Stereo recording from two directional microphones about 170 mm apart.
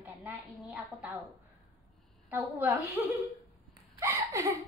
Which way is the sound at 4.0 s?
15° right (ahead or behind).